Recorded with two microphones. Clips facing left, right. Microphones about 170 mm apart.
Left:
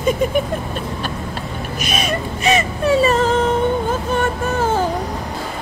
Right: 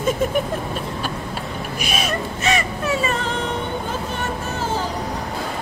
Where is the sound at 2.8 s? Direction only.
35° left (ahead or behind).